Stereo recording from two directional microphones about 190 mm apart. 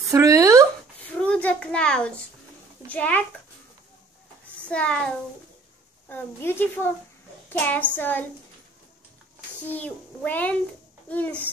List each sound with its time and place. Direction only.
0.1 s a sound: 15° right (ahead or behind)
1.0 s a sound: 5° left (ahead or behind)
2.9 s a child's voice: 5° left (ahead or behind)
4.6 s a child's voice: 5° left (ahead or behind)
7.4 s child singing: 10° left (ahead or behind)
7.9 s a child's voice: 10° left (ahead or behind)
9.7 s a child's voice: 10° left (ahead or behind)